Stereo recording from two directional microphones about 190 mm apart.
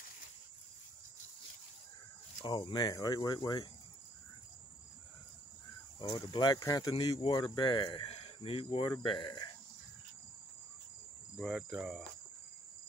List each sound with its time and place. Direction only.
2.4 s speech: 25° left (ahead or behind)
5.9 s speech: 25° left (ahead or behind)
11.3 s cricket: centre (ahead or behind)